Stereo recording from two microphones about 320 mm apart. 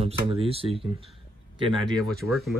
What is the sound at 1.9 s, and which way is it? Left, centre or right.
Speech, centre.